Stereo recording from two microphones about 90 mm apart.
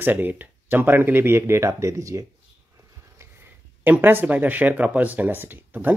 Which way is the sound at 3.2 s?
30° right (ahead or behind).